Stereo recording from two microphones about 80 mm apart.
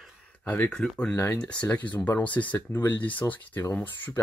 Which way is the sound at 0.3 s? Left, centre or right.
Left.